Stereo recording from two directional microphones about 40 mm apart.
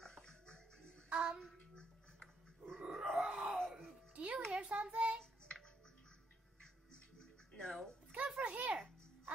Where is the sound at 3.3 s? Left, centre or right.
Right.